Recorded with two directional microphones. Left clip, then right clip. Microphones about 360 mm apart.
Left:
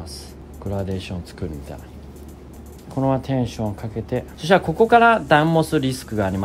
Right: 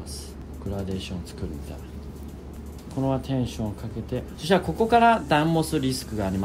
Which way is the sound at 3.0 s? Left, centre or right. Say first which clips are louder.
Left 6 dB; left.